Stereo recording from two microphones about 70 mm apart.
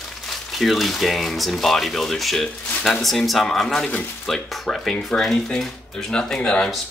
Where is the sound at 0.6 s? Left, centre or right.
Centre.